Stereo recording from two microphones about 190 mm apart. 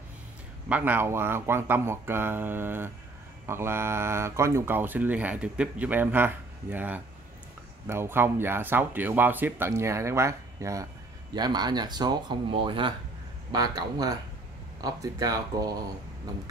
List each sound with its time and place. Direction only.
0.7 s speech: 10° right (ahead or behind)